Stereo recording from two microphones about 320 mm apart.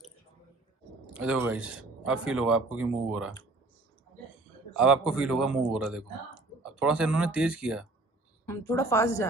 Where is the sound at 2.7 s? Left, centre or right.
Right.